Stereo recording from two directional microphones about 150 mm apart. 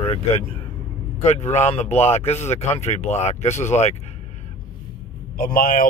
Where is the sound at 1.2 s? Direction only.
50° left (ahead or behind).